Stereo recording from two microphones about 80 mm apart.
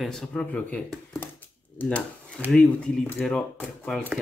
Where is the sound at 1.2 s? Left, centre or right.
Left.